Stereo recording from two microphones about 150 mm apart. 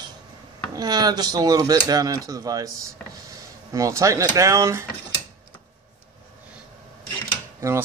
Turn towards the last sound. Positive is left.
turn(degrees=-20)  # may be behind; listen again after turning